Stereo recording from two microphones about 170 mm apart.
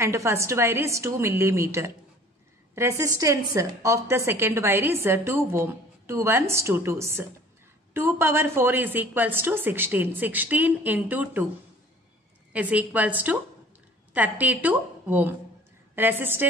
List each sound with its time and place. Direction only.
0.0 s a woman's voice: 15° right (ahead or behind)
12.5 s a woman's voice: 10° right (ahead or behind)